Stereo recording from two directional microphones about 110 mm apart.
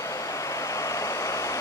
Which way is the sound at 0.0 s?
30° left (ahead or behind).